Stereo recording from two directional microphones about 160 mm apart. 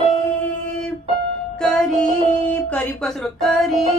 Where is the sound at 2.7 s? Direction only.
5° left (ahead or behind).